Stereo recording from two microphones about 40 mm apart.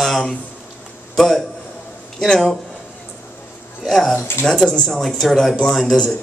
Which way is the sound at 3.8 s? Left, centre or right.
Centre.